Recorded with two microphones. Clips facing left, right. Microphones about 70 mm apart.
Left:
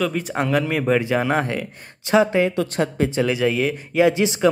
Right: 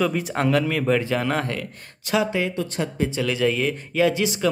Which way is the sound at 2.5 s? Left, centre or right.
Left.